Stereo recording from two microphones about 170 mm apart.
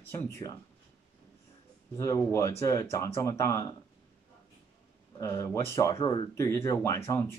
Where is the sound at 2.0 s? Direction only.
20° left (ahead or behind).